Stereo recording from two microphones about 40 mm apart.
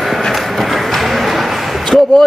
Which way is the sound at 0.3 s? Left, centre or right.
Centre.